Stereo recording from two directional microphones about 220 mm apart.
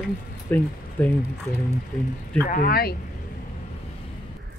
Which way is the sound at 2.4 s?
40° left (ahead or behind).